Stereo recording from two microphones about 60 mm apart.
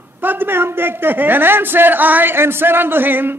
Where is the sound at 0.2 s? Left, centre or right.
Right.